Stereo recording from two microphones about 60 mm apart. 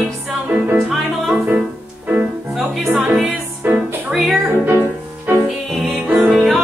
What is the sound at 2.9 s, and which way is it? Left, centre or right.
Music, centre.